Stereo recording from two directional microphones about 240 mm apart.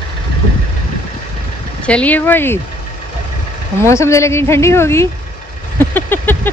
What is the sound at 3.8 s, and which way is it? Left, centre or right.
A woman's voice, centre.